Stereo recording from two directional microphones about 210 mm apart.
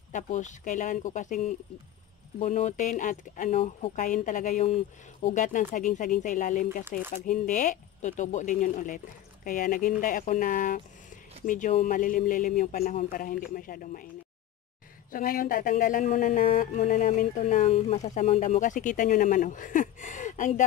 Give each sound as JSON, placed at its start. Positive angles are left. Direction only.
{"t": 0.1, "sound": "speech", "side_deg": 35}
{"t": 15.0, "sound": "speech", "side_deg": 40}